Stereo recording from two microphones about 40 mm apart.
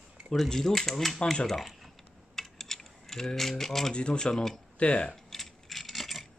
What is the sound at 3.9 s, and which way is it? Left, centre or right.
Speech, left.